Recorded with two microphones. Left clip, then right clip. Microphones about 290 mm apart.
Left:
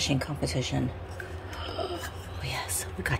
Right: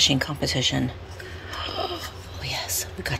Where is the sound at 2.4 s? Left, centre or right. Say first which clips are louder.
Right 5 dB; centre.